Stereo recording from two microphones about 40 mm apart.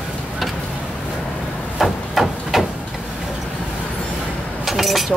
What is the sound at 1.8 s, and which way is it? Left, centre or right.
Hammer, centre.